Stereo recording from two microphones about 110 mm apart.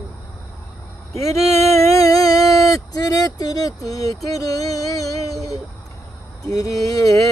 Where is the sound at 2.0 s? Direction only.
35° left (ahead or behind).